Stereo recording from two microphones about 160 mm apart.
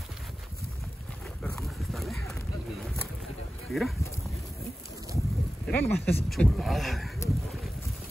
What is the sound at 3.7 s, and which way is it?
Speech, centre (ahead or behind).